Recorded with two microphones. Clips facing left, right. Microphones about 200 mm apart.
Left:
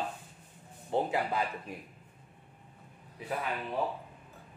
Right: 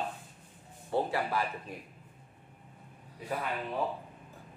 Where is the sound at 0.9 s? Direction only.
20° left (ahead or behind).